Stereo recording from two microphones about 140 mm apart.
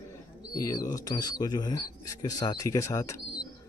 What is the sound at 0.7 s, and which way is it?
Speech, 25° left (ahead or behind).